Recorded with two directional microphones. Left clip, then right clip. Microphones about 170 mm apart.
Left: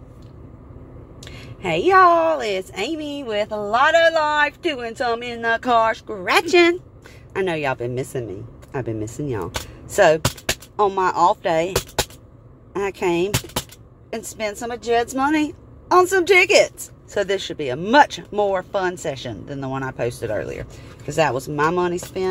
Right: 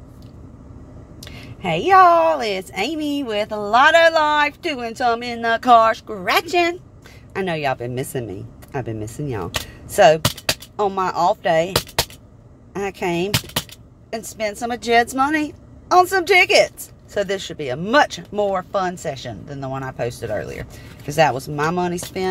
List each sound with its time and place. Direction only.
1.2 s a woman's voice: 5° right (ahead or behind)
6.3 s a woman's voice: 10° left (ahead or behind)
7.3 s a woman's voice: centre (ahead or behind)
8.8 s a woman's voice: centre (ahead or behind)
12.7 s a woman's voice: centre (ahead or behind)
14.7 s a woman's voice: 20° right (ahead or behind)
15.0 s a woman's voice: 5° right (ahead or behind)